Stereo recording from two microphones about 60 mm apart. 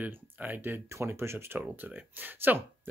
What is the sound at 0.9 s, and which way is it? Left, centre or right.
Speech, right.